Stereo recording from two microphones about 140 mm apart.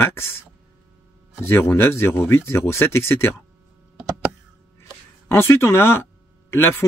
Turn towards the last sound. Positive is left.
turn(degrees=15)  # may be behind; listen again after turning